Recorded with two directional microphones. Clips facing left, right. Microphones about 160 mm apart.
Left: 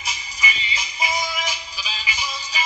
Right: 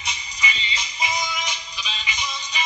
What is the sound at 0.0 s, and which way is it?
Music, 5° left (ahead or behind).